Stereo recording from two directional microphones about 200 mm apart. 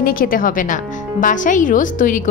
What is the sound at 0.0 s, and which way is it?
A woman's voice, 45° left (ahead or behind).